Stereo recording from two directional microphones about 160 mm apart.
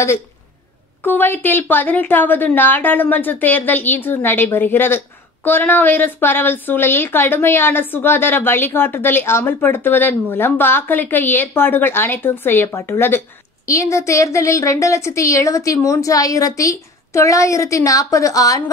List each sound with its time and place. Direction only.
1.0 s a woman's voice: 10° left (ahead or behind)